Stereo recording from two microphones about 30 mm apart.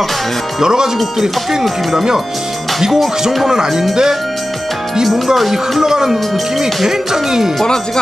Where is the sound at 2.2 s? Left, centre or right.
Centre.